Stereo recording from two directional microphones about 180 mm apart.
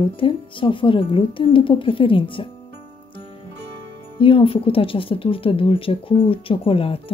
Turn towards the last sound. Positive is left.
turn(degrees=30)  # may be behind; listen again after turning